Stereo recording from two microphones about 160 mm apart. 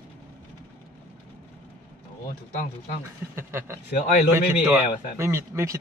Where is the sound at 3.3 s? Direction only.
15° right (ahead or behind).